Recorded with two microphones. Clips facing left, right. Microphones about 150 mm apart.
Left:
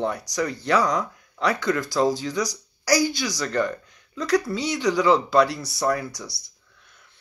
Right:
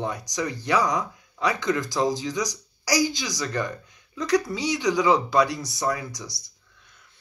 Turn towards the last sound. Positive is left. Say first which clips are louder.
# left 4 dB
turn(degrees=-15)  # may be behind; listen again after turning